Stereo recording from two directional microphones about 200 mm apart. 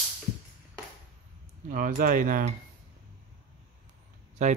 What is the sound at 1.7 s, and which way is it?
Cutlery, 45° right (ahead or behind).